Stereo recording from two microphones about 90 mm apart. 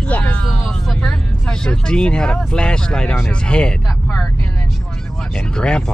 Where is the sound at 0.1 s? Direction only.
15° left (ahead or behind).